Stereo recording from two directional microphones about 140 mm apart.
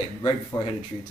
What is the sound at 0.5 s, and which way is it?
Speech, 25° left (ahead or behind).